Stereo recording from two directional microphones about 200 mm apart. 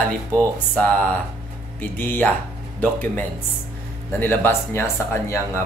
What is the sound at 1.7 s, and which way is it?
Speech, 10° left (ahead or behind).